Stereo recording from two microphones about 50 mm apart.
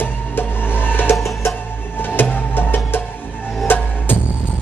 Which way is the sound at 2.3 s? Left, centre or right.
Left.